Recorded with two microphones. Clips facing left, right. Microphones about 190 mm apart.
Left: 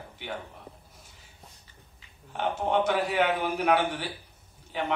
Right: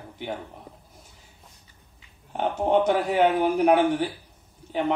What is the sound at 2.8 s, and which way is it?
Speech, 40° right (ahead or behind).